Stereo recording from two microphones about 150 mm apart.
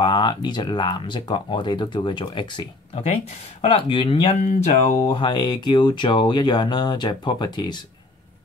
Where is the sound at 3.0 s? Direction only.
45° left (ahead or behind); by 7.8 s 30° left (ahead or behind).